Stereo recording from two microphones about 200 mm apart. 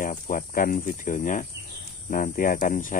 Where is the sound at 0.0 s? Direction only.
40° left (ahead or behind).